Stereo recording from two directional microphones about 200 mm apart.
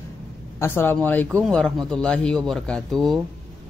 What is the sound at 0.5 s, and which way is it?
Speech, 10° left (ahead or behind).